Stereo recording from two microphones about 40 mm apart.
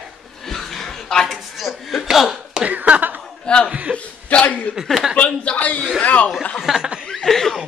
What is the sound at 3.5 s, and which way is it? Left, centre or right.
Chuckle, left.